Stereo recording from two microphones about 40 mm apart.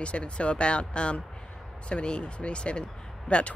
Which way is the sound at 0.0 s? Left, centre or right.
Left.